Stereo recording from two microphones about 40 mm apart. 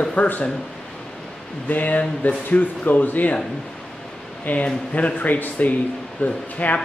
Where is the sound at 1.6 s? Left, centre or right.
Left.